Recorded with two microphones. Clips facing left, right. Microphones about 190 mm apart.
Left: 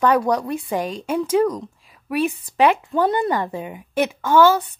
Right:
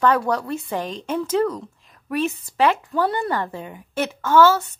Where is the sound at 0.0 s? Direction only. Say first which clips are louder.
Left 2 dB; 15° left (ahead or behind).